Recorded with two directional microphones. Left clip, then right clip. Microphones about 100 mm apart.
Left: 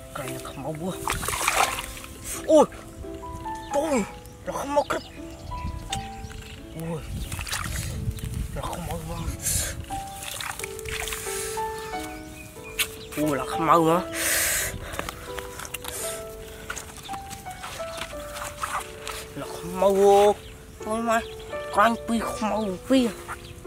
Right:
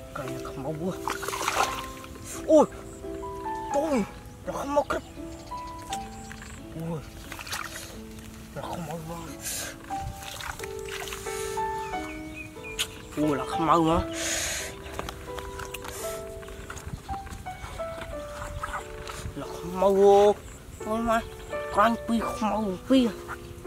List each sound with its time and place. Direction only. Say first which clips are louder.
0.1 s splash: left 1 dB; 15° left (ahead or behind)
2.5 s speech: left 2 dB; 50° left (ahead or behind)
3.7 s speech: left 3 dB; 5° left (ahead or behind)
7.4 s music: left 3 dB; 5° left (ahead or behind)
8.5 s a sound: left 2 dB; 10° left (ahead or behind)
9.1 s speech: left 4 dB; centre (ahead or behind)
10.2 s music: left 3 dB; 5° left (ahead or behind)
12.7 s a sound: left 3 dB; 15° left (ahead or behind)
15.0 s music: left 1 dB; 5° right (ahead or behind)
15.6 s music: left 1 dB; 15° left (ahead or behind)
17.9 s music: left 2 dB; 30° left (ahead or behind)
19.0 s a sound: left 3 dB; 10° left (ahead or behind)
20.8 s speech: left 2 dB; 5° left (ahead or behind)